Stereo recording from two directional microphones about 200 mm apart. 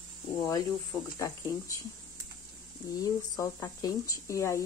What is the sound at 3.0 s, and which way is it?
Speech, 15° left (ahead or behind).